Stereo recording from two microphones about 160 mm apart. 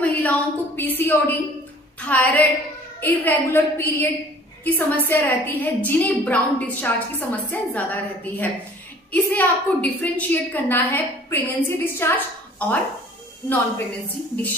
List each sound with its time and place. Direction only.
0.0 s a woman's voice: 10° left (ahead or behind)